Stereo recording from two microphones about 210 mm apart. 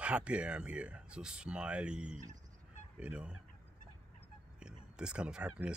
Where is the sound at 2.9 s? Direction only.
5° right (ahead or behind).